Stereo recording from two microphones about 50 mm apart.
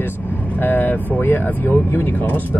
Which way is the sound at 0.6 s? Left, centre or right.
Left.